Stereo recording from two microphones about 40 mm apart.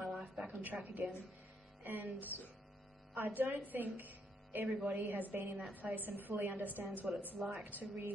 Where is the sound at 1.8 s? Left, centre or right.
Right.